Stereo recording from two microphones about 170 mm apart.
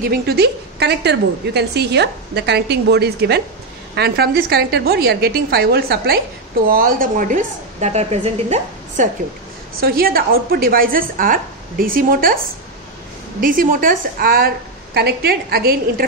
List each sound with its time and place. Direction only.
0.1 s a woman's voice: 70° right (ahead or behind)
6.7 s a woman's voice: 55° right (ahead or behind)
9.8 s a woman's voice: 60° right (ahead or behind)
13.4 s a woman's voice: 55° right (ahead or behind)